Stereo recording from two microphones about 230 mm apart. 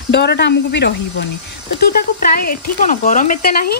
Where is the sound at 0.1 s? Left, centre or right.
Left.